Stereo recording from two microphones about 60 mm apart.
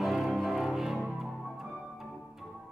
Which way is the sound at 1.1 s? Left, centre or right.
Centre.